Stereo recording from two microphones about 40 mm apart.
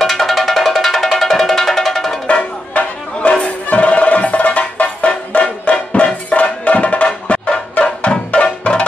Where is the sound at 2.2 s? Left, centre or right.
Left.